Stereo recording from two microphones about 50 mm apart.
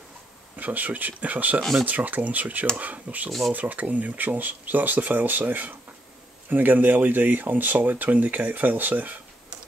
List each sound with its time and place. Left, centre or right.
0.6 s speech: right
3.3 s speech: centre
3.5 s speech: right